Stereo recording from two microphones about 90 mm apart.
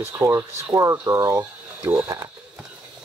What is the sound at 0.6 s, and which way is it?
Speech, 40° right (ahead or behind).